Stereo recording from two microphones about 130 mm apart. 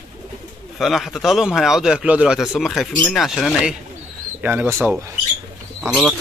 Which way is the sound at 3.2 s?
Centre (ahead or behind).